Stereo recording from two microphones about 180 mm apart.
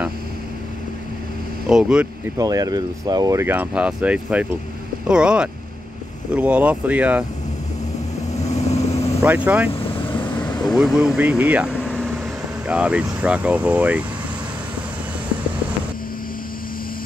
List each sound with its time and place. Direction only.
1.7 s speech: 5° right (ahead or behind)
2.3 s speech: 20° right (ahead or behind)
8.4 s vehicle: 40° left (ahead or behind)
9.2 s speech: 10° right (ahead or behind)
10.1 s vehicle: 25° left (ahead or behind)
10.6 s speech: centre (ahead or behind)
11.8 s vehicle: 5° left (ahead or behind)
12.6 s speech: 5° right (ahead or behind)